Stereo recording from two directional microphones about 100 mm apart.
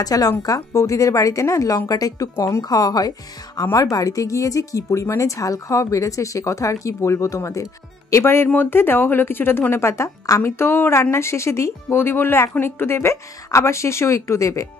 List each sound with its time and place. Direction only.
0.0 s speech: 40° left (ahead or behind)